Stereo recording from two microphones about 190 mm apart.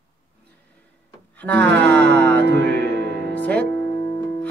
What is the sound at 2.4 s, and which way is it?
Music, 65° right (ahead or behind).